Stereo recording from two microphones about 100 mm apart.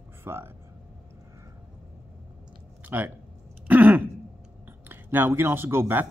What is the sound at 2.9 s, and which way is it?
Speech, 20° right (ahead or behind).